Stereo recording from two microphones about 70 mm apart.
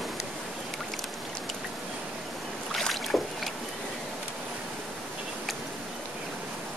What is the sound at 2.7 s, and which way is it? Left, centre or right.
Boat, centre.